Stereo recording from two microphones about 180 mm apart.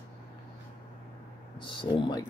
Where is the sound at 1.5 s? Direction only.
25° left (ahead or behind).